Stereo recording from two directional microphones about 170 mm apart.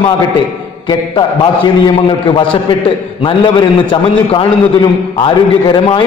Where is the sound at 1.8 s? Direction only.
30° left (ahead or behind).